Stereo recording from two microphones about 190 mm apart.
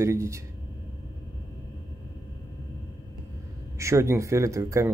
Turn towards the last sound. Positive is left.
turn(degrees=-15)  # may be behind; listen again after turning